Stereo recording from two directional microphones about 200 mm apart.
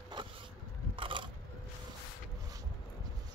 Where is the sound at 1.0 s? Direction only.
25° right (ahead or behind).